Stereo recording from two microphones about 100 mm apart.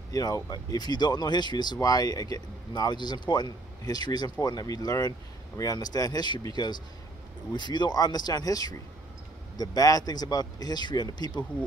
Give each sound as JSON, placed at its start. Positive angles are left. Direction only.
{"t": 0.1, "sound": "speech", "side_deg": 35}